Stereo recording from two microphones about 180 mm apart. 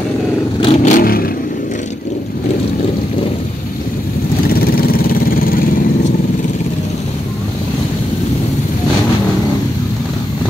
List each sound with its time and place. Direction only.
0.6 s vehicle: 35° left (ahead or behind)
0.9 s vehicle: 55° left (ahead or behind)
4.6 s vehicle: 55° left (ahead or behind)